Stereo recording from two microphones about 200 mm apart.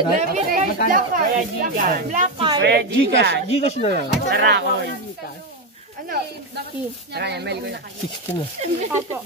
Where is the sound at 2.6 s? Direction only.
60° right (ahead or behind).